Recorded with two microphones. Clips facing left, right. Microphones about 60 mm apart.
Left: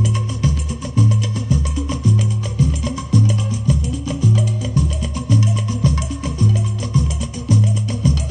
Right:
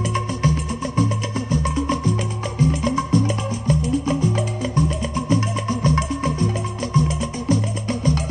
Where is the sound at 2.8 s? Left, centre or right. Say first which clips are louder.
Right 1 dB; right.